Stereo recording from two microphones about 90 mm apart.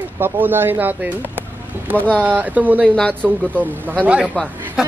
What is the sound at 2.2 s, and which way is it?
Speech, 20° right (ahead or behind).